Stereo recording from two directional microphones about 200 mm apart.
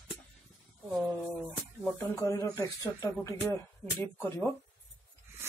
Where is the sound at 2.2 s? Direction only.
15° left (ahead or behind).